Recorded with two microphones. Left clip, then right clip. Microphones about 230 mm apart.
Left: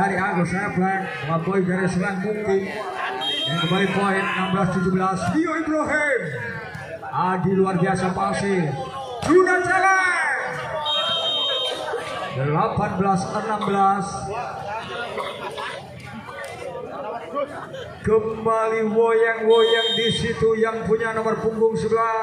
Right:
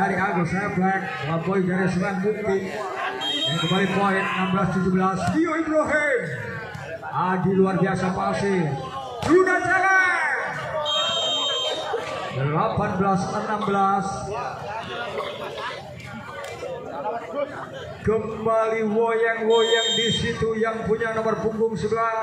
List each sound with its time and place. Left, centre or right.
0.0 s a man's voice: left
7.2 s a man's voice: left
9.3 s a sound: left
12.4 s a man's voice: left
18.0 s a man's voice: left